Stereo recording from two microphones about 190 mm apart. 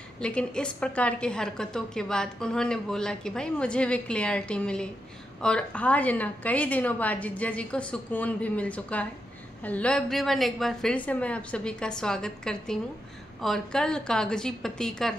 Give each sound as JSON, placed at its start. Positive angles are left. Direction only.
{"t": 0.2, "sound": "a woman's voice", "side_deg": 5}